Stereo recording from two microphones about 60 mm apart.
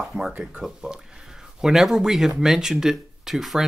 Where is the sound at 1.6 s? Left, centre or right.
Centre.